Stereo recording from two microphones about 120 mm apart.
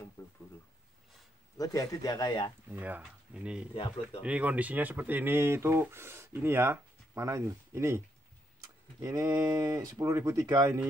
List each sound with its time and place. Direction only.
1.6 s speech: 30° left (ahead or behind)
2.7 s speech: 15° right (ahead or behind)
9.0 s speech: 25° right (ahead or behind)